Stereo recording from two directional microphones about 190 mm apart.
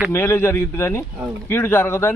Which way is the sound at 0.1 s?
15° left (ahead or behind).